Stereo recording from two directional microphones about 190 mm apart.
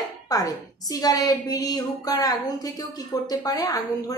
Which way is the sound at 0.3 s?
20° left (ahead or behind).